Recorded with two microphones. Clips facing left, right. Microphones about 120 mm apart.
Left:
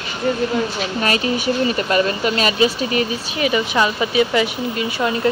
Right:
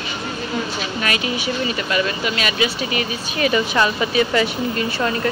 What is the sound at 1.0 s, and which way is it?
Speech, 35° left (ahead or behind).